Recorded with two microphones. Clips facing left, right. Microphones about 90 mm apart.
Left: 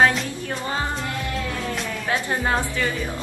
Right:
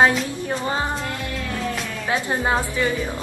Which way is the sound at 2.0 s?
20° right (ahead or behind).